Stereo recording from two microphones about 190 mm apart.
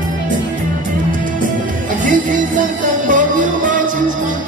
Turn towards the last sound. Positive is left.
turn(degrees=-45)  # may be behind; listen again after turning